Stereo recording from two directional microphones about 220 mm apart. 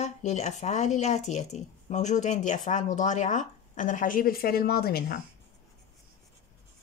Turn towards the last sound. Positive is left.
turn(degrees=45)  # may be behind; listen again after turning